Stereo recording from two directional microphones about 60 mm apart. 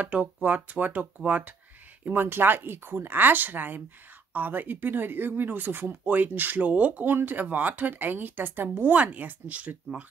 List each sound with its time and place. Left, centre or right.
0.0 s speech: right
7.1 s speech: right